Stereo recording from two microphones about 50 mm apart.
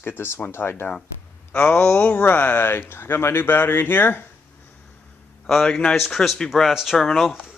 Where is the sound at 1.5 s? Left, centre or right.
Left.